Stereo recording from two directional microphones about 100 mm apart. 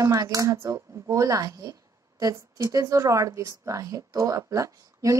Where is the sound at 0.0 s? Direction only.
35° right (ahead or behind).